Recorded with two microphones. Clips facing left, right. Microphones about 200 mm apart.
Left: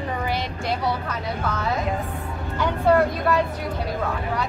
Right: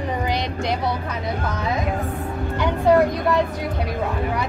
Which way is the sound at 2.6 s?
15° right (ahead or behind).